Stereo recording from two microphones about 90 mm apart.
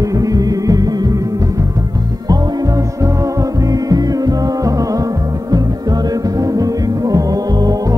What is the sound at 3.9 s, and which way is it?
Music, 45° right (ahead or behind).